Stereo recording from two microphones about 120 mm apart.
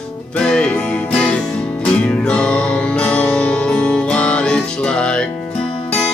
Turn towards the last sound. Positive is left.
turn(degrees=10)  # may be behind; listen again after turning